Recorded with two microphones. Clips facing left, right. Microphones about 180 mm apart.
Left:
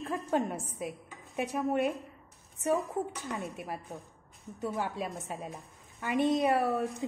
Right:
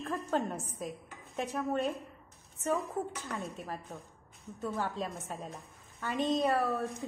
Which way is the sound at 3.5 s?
15° left (ahead or behind).